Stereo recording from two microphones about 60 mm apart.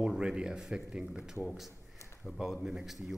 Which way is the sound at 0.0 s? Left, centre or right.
Centre.